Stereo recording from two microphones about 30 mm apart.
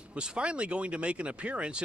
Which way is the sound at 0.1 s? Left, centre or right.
Right.